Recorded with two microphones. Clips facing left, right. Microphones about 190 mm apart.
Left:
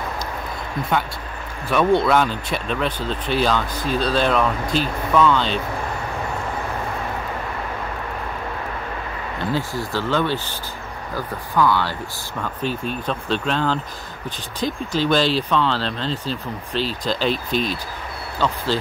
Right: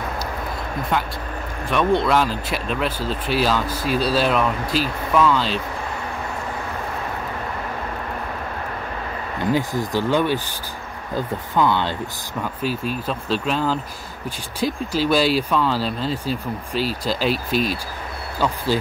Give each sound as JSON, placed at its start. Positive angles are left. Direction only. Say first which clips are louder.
{"t": 1.7, "sound": "speech", "louder": "left 2 dB", "side_deg": 0}
{"t": 9.5, "sound": "speech", "louder": "right 4 dB", "side_deg": -15}
{"t": 12.6, "sound": "speech", "louder": "even", "side_deg": -5}